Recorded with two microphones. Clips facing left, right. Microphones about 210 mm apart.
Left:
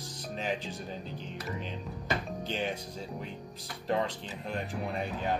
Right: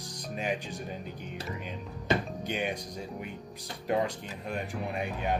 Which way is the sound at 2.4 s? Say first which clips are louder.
Right 1 dB; 15° right (ahead or behind).